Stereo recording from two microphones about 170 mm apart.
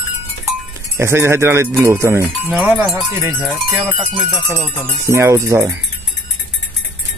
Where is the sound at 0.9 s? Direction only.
15° right (ahead or behind).